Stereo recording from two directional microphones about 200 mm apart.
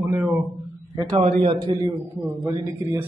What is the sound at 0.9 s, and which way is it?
Speech, 20° right (ahead or behind).